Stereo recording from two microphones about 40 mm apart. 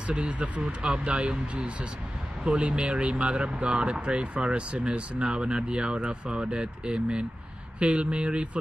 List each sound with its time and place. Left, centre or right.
0.0 s speech: right